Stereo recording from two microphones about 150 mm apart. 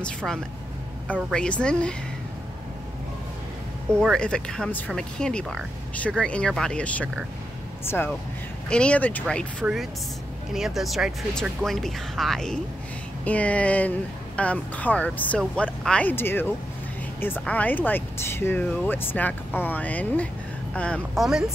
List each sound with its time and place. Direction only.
0.0 s speech: 5° left (ahead or behind)
4.0 s speech: 5° left (ahead or behind)
9.6 s a woman's voice: 10° right (ahead or behind); by 21.0 s 10° left (ahead or behind)
21.2 s speech: 5° right (ahead or behind)